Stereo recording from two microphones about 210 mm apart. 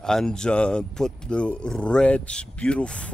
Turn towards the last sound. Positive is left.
turn(degrees=5)  # may be behind; listen again after turning